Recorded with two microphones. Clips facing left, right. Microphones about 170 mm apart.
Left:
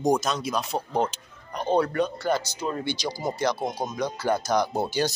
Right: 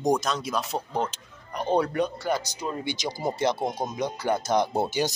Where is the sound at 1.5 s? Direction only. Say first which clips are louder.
Left 1 dB; 10° right (ahead or behind).